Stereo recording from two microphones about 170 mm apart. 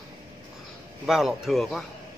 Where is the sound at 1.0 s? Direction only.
Centre (ahead or behind).